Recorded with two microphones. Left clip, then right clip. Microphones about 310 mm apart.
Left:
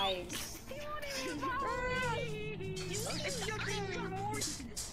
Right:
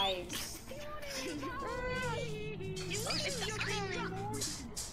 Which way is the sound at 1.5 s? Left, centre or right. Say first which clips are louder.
Left 5 dB; centre.